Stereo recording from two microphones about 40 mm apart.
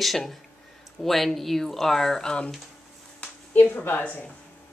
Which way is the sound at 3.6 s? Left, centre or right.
Left.